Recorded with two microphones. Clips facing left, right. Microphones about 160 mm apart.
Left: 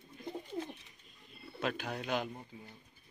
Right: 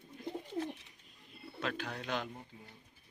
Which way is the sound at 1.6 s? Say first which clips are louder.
Left 2 dB; 15° left (ahead or behind).